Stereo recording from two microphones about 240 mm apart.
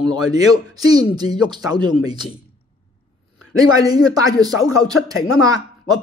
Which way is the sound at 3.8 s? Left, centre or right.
Centre.